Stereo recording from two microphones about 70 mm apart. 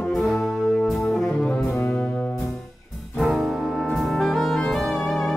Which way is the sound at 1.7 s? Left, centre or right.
Left.